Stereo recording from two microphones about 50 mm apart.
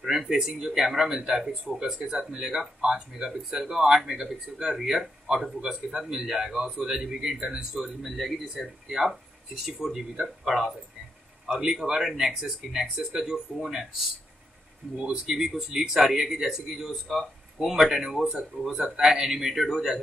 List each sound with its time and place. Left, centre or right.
0.0 s speech: centre
7.7 s speech: centre
11.7 s speech: centre